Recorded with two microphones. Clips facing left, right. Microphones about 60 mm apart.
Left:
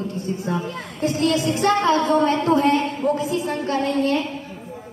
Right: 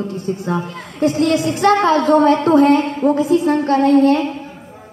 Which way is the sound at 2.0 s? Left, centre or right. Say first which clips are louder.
Right 6 dB; right.